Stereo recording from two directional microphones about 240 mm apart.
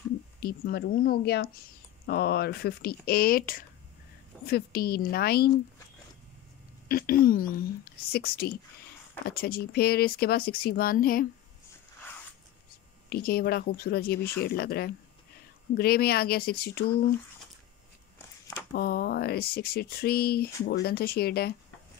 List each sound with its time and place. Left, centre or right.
0.4 s speech: left
6.9 s speech: left
13.1 s speech: left
18.7 s speech: left